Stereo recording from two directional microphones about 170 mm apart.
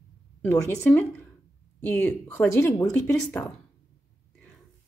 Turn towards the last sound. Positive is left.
turn(degrees=10)  # may be behind; listen again after turning